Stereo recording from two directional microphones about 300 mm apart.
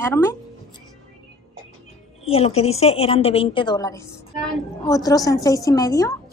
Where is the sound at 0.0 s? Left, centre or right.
Centre.